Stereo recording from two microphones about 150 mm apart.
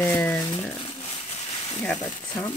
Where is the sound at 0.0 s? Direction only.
10° left (ahead or behind).